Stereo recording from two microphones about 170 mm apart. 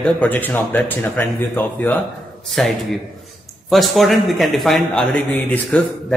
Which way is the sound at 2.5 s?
Centre (ahead or behind).